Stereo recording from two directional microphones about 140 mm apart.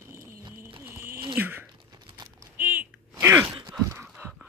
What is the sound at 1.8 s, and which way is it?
Crumpling, 30° right (ahead or behind).